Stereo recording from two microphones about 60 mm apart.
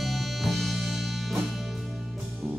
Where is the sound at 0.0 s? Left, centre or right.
Centre.